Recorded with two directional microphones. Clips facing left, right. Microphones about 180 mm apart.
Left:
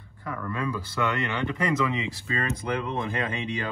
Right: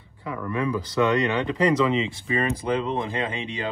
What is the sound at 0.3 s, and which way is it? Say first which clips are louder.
Speech: right 4 dB; 15° right (ahead or behind).